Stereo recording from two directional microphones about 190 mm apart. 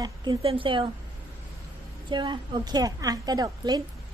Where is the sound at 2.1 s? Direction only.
25° right (ahead or behind).